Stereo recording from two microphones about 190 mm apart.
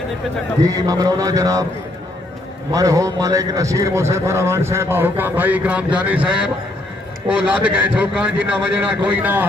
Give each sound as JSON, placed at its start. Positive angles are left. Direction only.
{"t": 0.7, "sound": "a man's voice", "side_deg": -20}
{"t": 2.7, "sound": "a man's voice", "side_deg": -15}